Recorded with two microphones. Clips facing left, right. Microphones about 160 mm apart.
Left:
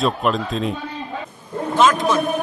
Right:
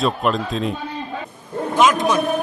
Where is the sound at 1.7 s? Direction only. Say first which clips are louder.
Even; 15° right (ahead or behind).